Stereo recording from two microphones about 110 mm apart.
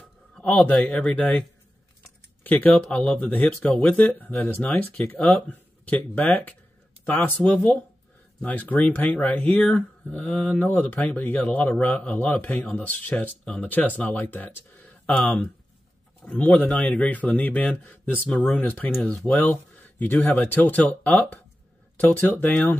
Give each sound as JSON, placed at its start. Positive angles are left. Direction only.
{"t": 0.4, "sound": "speech", "side_deg": 10}
{"t": 2.4, "sound": "speech", "side_deg": 15}